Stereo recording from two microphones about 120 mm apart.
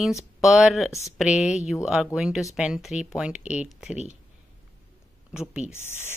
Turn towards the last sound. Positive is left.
turn(degrees=20)  # may be behind; listen again after turning